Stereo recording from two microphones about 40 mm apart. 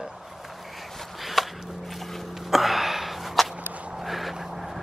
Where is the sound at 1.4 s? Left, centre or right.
Centre.